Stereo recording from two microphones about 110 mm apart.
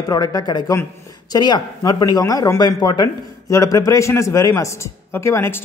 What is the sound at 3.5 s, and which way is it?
A man's voice, 30° left (ahead or behind).